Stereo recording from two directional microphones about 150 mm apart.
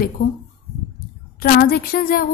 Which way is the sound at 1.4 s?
75° left (ahead or behind).